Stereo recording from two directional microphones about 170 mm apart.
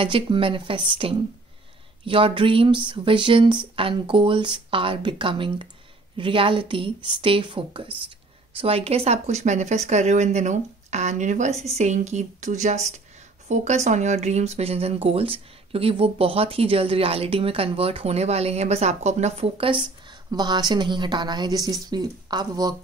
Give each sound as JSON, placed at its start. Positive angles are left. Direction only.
{"t": 0.0, "sound": "speech", "side_deg": -30}